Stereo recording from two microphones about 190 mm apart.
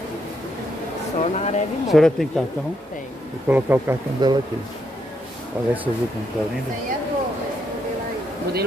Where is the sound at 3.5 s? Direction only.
10° right (ahead or behind).